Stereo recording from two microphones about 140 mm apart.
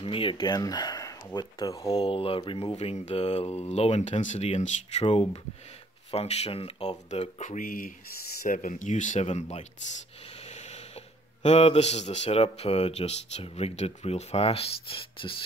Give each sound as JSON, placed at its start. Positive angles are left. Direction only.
{"t": 0.0, "sound": "speech", "side_deg": 40}
{"t": 2.0, "sound": "a man's voice", "side_deg": 40}
{"t": 8.4, "sound": "speech", "side_deg": 75}
{"t": 11.4, "sound": "a man's voice", "side_deg": 50}